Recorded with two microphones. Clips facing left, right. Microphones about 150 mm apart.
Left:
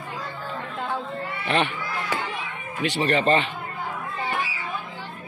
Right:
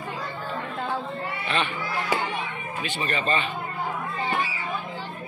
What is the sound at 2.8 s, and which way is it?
Speech, 75° left (ahead or behind).